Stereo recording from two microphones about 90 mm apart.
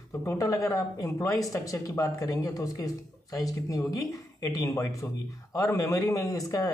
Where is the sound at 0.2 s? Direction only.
35° left (ahead or behind).